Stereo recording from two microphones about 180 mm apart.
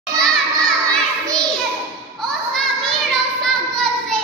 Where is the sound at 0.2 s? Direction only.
Centre (ahead or behind).